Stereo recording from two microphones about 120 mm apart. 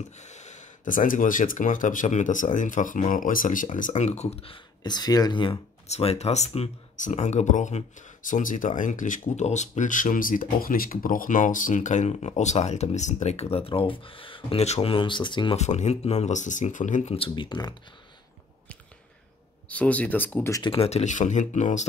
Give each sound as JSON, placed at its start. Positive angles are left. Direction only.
{"t": 0.2, "sound": "speech", "side_deg": 75}
{"t": 4.8, "sound": "speech", "side_deg": 35}
{"t": 5.9, "sound": "speech", "side_deg": 60}
{"t": 11.2, "sound": "speech", "side_deg": 90}
{"t": 15.5, "sound": "speech", "side_deg": 70}
{"t": 17.2, "sound": "speech", "side_deg": 40}
{"t": 19.7, "sound": "speech", "side_deg": 10}
{"t": 20.6, "sound": "speech", "side_deg": 55}